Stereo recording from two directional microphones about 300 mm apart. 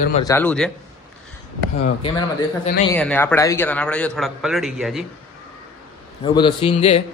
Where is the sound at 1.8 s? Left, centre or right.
Centre.